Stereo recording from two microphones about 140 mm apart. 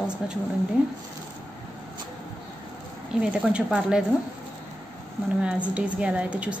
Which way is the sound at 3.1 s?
5° right (ahead or behind).